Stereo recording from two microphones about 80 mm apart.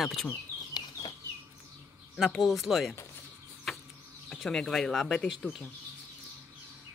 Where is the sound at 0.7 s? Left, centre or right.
Left.